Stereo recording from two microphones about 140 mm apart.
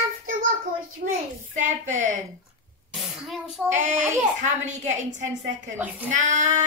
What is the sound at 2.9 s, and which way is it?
Sneeze, centre (ahead or behind).